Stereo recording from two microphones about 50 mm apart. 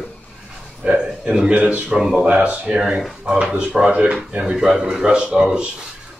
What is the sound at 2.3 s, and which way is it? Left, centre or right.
Speech, right.